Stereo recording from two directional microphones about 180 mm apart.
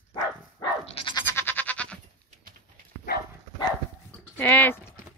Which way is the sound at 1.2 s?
15° left (ahead or behind).